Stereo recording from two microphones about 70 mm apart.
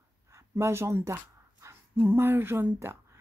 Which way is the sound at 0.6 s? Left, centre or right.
Right.